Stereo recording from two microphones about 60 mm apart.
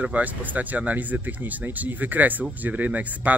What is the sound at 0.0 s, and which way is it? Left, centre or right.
A man's voice, right.